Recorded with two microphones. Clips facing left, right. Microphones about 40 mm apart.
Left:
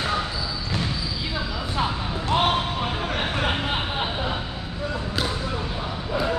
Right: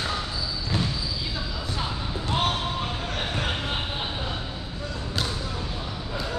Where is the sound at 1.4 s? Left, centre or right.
Left.